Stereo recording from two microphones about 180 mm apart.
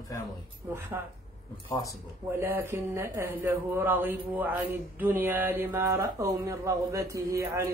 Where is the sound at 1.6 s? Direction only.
25° left (ahead or behind).